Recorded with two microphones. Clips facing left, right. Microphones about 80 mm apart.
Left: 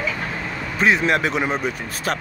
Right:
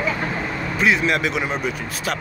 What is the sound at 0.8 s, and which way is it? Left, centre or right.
Speech, left.